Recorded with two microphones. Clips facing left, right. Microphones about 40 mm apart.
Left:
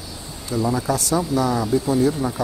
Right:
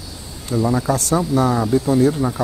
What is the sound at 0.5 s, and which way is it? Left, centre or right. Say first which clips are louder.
Speech: right 3 dB; right.